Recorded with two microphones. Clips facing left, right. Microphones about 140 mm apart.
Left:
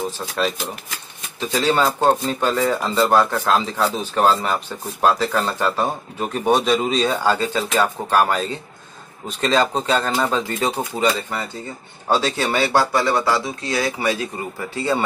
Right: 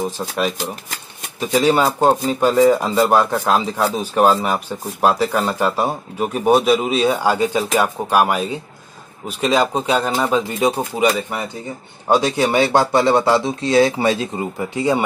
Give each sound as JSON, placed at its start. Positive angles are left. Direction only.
{"t": 1.5, "sound": "speech", "side_deg": -15}